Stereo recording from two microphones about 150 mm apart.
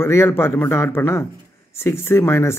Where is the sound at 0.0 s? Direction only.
15° left (ahead or behind).